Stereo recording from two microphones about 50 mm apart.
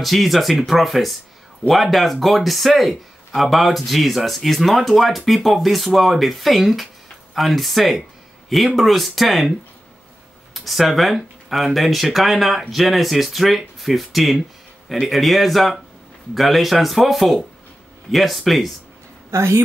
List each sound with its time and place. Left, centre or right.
0.0 s speech: centre
10.5 s speech: centre
19.3 s a woman's voice: right